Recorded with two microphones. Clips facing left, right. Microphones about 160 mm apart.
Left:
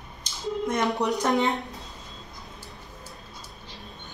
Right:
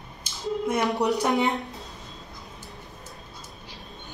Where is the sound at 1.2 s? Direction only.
20° right (ahead or behind).